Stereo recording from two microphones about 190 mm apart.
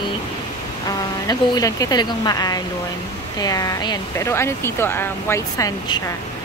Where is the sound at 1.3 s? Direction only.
20° left (ahead or behind).